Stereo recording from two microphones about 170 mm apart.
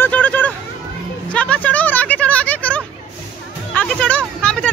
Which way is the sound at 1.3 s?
5° left (ahead or behind).